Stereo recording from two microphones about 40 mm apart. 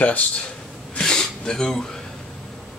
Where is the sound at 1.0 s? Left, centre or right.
Centre.